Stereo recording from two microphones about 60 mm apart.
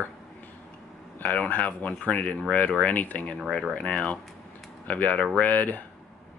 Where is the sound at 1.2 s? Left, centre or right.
Left.